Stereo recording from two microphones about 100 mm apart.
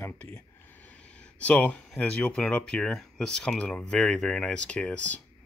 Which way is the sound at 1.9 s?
10° left (ahead or behind).